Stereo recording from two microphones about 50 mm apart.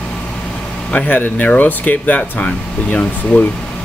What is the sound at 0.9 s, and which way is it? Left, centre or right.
Speech, left.